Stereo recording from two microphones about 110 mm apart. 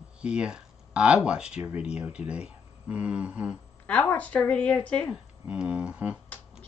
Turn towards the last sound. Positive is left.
turn(degrees=-10)  # may be behind; listen again after turning